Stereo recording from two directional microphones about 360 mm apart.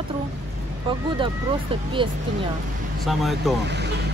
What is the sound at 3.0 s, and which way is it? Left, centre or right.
Speech, centre.